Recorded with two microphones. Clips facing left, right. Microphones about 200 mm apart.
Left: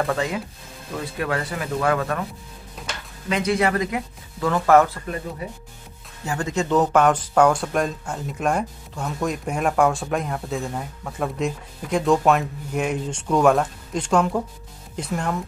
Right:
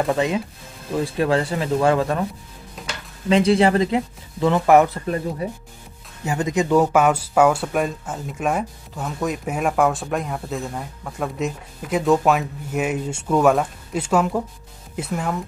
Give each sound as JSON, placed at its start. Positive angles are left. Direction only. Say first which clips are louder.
{"t": 0.0, "sound": "speech", "louder": "right 3 dB", "side_deg": -20}
{"t": 3.3, "sound": "speech", "louder": "right 5 dB", "side_deg": -30}
{"t": 6.2, "sound": "speech", "louder": "right 3 dB", "side_deg": -20}